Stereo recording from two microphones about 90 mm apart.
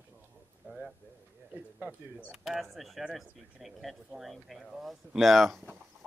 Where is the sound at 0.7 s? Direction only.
15° right (ahead or behind).